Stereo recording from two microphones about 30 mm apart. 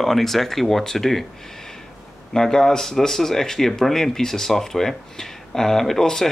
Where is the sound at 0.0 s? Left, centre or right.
Centre.